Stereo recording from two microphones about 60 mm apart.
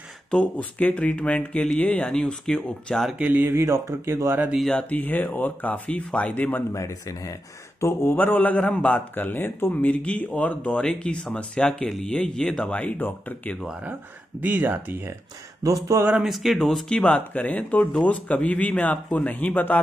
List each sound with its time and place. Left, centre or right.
0.3 s speech: centre
3.2 s speech: right
3.5 s speech: right
4.8 s speech: left
6.7 s speech: left
7.8 s speech: left
8.2 s speech: left
9.1 s speech: left; by 12.6 s centre
12.6 s speech: left
14.4 s speech: right
15.6 s a sound: right
16.3 s speech: centre
16.9 s speech: centre